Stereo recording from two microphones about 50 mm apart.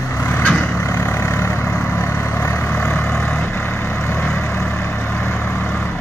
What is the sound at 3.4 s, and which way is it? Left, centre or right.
Vehicle, left.